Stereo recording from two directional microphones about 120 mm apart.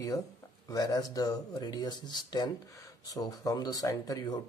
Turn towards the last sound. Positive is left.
turn(degrees=30)  # may be behind; listen again after turning